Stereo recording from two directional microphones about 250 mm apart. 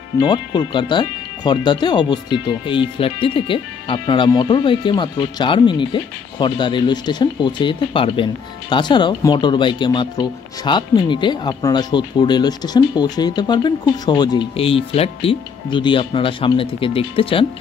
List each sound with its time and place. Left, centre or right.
0.2 s speech: centre